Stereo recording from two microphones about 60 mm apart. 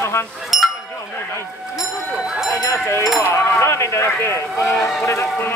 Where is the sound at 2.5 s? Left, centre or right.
Left.